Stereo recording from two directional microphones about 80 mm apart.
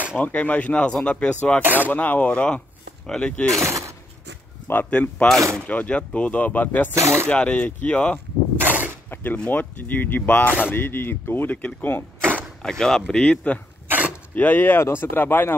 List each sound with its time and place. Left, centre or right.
0.2 s speech: centre
1.6 s speech: right
1.9 s speech: left
3.6 s a sound: right
4.6 s speech: left
5.4 s speech: right
5.7 s speech: centre
8.5 s a sound: right
9.1 s speech: left
12.2 s arrow: right
12.6 s speech: centre
13.8 s dog: centre
14.3 s speech: left